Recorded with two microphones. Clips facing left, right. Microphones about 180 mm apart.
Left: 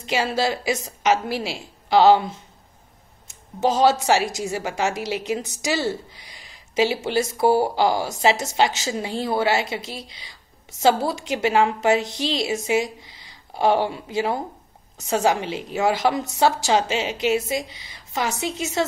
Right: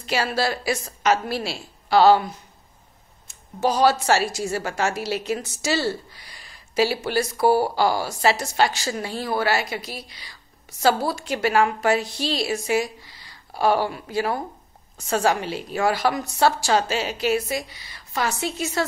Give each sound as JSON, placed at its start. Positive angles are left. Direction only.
{"t": 0.0, "sound": "a woman's voice", "side_deg": 20}
{"t": 3.6, "sound": "a woman's voice", "side_deg": 20}